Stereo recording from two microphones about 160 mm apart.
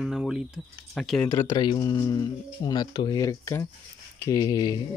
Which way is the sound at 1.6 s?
25° left (ahead or behind).